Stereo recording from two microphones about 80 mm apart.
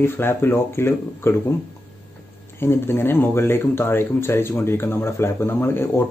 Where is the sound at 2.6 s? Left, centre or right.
Left.